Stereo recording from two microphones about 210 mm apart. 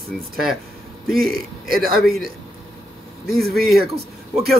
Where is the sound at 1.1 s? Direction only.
45° right (ahead or behind).